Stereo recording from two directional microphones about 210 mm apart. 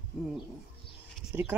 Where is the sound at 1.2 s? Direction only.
5° right (ahead or behind).